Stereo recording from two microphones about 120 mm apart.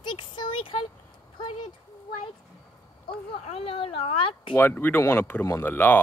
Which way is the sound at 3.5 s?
55° left (ahead or behind).